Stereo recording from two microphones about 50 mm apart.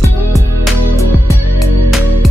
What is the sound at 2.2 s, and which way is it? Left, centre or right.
Music, centre.